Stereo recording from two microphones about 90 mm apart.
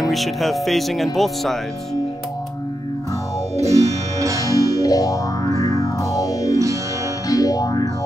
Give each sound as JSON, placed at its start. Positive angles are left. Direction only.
{"t": 0.0, "sound": "speech", "side_deg": 0}
{"t": 3.6, "sound": "music", "side_deg": -35}
{"t": 4.8, "sound": "music", "side_deg": 40}